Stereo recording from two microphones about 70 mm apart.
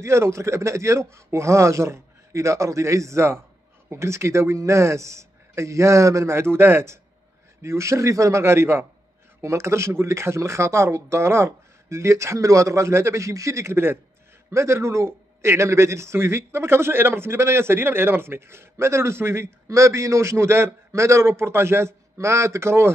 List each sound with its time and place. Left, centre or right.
0.0 s a man's voice: right